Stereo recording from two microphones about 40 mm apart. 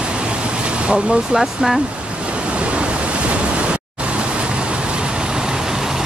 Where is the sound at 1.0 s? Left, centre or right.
Centre.